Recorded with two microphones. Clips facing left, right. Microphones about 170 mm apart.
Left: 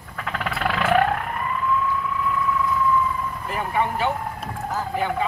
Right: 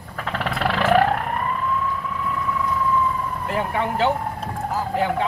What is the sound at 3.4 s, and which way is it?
Speech, 65° right (ahead or behind).